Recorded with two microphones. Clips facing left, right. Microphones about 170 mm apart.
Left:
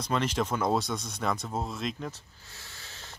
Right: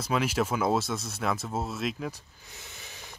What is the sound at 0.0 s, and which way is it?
Speech, 5° right (ahead or behind).